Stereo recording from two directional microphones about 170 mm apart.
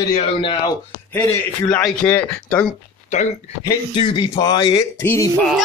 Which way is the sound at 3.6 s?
25° left (ahead or behind).